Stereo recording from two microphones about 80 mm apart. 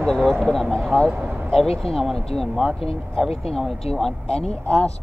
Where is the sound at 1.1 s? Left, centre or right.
Right.